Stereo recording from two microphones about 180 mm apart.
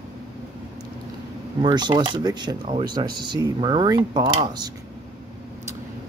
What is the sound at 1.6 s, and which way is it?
Speech, 25° right (ahead or behind).